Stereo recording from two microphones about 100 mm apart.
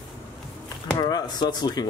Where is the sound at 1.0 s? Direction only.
40° left (ahead or behind).